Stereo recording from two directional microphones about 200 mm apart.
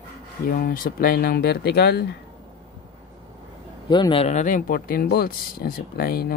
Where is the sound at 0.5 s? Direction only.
45° left (ahead or behind).